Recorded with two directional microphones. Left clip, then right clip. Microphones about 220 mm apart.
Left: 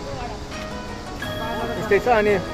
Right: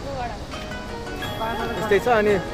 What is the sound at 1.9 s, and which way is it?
Speech, centre (ahead or behind).